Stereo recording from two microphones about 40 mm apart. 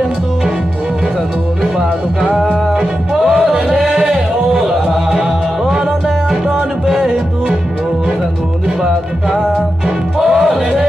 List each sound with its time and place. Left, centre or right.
2.7 s music: centre
8.6 s music: centre